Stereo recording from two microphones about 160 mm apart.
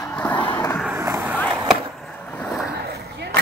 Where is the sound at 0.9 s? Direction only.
10° right (ahead or behind).